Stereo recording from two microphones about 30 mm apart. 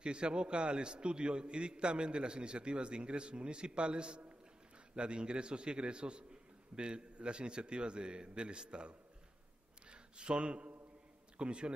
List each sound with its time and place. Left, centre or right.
0.0 s a man's voice: right